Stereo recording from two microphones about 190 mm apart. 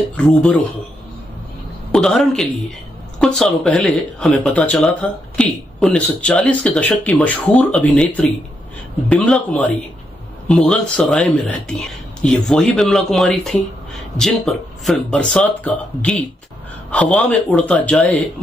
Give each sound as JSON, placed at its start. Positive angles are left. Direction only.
{"t": 0.1, "sound": "speech", "side_deg": 5}
{"t": 1.9, "sound": "a man's voice", "side_deg": 5}